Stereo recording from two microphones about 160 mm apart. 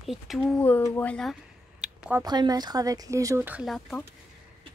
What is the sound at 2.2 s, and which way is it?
Speech, 25° right (ahead or behind).